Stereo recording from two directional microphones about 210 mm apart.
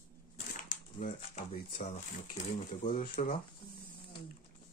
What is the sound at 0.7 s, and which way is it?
Speech, 35° left (ahead or behind).